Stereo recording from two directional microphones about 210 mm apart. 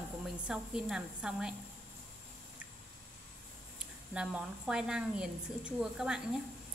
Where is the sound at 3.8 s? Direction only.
5° right (ahead or behind).